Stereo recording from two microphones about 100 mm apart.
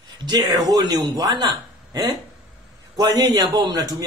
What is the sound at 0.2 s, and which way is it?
A man's voice, 40° right (ahead or behind).